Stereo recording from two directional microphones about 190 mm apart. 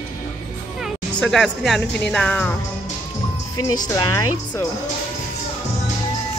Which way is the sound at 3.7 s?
20° left (ahead or behind).